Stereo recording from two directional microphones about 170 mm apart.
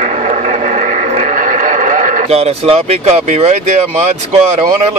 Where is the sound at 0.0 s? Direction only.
45° right (ahead or behind).